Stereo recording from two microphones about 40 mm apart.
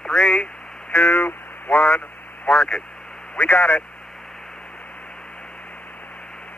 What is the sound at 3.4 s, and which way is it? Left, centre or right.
Speech, left.